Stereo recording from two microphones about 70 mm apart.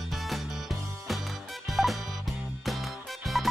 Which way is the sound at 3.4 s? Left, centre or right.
Centre.